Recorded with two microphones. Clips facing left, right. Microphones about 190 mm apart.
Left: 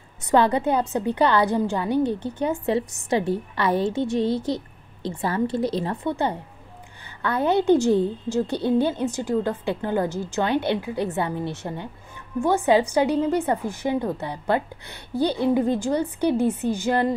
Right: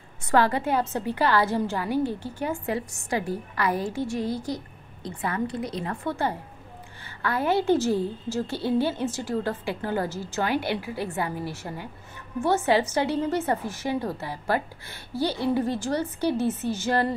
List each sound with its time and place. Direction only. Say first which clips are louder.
0.3 s a woman's voice: left 3 dB; 20° left (ahead or behind)
6.0 s a woman's voice: left 3 dB; 20° left (ahead or behind)